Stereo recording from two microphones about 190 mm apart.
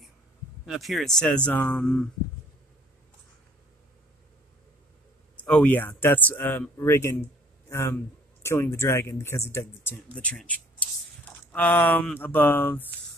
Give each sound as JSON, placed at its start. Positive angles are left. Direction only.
{"t": 0.7, "sound": "speech", "side_deg": 0}
{"t": 5.4, "sound": "speech", "side_deg": 5}